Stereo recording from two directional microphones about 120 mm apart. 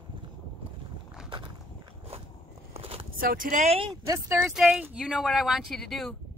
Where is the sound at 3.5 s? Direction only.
80° right.